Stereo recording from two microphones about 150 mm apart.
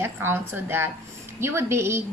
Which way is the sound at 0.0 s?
15° right (ahead or behind).